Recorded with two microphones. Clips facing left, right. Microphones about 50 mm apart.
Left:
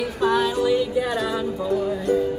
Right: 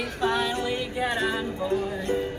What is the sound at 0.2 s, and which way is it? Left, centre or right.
Music, right.